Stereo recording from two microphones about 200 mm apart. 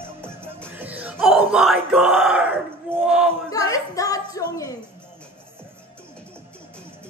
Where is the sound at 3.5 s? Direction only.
15° left (ahead or behind).